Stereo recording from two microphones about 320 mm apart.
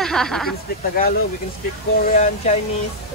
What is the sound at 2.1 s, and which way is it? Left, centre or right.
Speech, left.